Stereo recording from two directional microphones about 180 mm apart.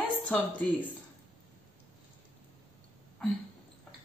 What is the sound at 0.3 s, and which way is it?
Speech, 10° left (ahead or behind).